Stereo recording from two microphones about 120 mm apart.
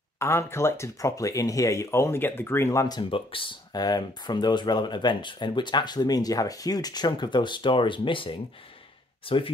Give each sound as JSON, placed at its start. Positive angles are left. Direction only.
{"t": 0.2, "sound": "speech", "side_deg": 20}
{"t": 3.0, "sound": "speech", "side_deg": 50}